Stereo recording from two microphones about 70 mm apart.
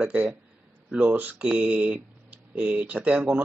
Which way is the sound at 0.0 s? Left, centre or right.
Centre.